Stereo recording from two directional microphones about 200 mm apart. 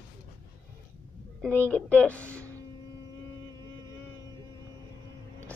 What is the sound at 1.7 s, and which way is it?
Speech, 5° left (ahead or behind).